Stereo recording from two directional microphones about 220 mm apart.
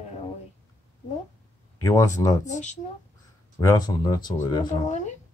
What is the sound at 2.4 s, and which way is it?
Speech, 35° left (ahead or behind).